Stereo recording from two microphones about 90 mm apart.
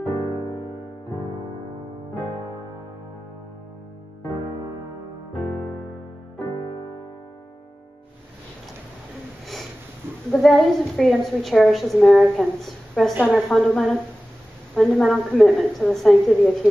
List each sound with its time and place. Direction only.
0.1 s music: 55° left (ahead or behind)
6.4 s music: 40° left (ahead or behind)
10.3 s a woman's voice: centre (ahead or behind)